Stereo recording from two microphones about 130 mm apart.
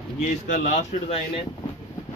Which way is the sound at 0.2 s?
65° left (ahead or behind).